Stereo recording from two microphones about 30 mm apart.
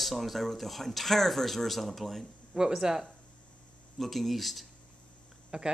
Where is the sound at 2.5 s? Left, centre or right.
Right.